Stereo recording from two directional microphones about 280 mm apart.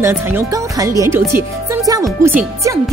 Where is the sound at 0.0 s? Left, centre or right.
Centre.